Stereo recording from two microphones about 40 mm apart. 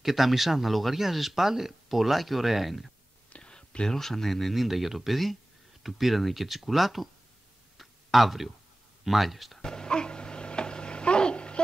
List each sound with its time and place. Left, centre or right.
0.0 s speech: centre
3.3 s whispering: left
3.5 s speech: centre
7.7 s tick-tock: centre
9.0 s speech: centre
9.6 s a sound: centre